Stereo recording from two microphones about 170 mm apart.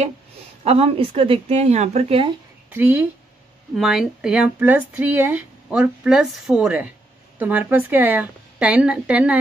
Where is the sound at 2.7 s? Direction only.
10° right (ahead or behind).